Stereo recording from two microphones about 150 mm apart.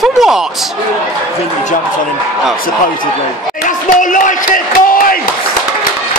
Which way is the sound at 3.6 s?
60° left (ahead or behind).